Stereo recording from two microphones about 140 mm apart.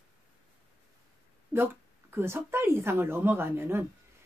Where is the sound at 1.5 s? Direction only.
15° right (ahead or behind).